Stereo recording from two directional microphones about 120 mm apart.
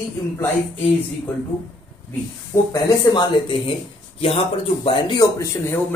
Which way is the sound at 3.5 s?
50° left (ahead or behind).